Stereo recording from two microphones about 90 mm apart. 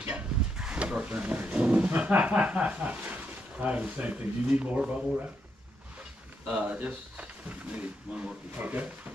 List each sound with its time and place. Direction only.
0.0 s speech: 15° right (ahead or behind)
6.5 s speech: 15° right (ahead or behind)